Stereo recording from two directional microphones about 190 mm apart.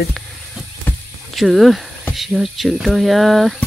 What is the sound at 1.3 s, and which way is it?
Speech, centre (ahead or behind).